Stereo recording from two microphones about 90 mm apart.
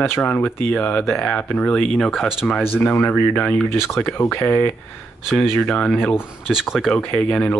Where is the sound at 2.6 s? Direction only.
25° left (ahead or behind).